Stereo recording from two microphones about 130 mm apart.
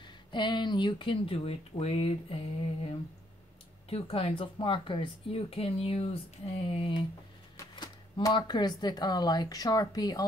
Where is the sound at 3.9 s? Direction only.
45° left (ahead or behind).